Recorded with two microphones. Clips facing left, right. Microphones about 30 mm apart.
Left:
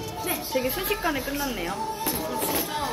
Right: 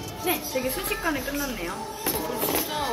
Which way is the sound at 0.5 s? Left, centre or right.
Centre.